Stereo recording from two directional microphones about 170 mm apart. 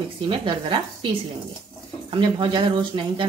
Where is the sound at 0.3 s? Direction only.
30° right (ahead or behind).